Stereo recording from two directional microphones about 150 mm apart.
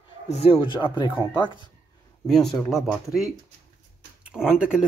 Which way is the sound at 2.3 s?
Centre (ahead or behind).